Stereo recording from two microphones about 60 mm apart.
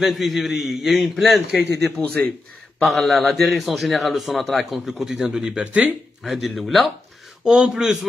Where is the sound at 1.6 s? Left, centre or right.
Left.